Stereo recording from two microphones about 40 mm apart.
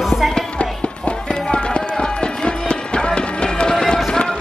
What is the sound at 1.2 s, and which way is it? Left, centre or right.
Music, centre.